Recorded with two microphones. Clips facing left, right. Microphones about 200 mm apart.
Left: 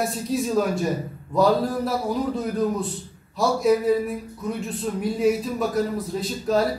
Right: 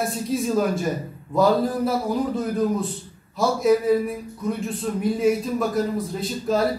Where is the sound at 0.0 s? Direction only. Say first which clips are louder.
Even; centre (ahead or behind).